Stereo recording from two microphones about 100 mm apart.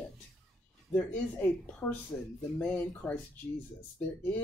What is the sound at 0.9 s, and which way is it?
Speech, 15° left (ahead or behind).